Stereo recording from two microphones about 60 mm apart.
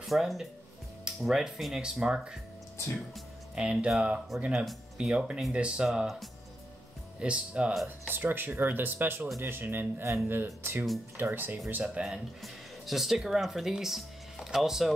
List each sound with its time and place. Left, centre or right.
0.0 s speech: centre
3.5 s speech: centre
4.3 s speech: centre
4.9 s speech: centre
7.2 s speech: centre
7.7 s speech: centre
8.1 s speech: right
12.0 s speech: centre